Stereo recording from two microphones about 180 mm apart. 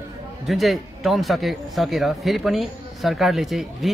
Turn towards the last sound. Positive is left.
turn(degrees=0)  # may be behind; listen again after turning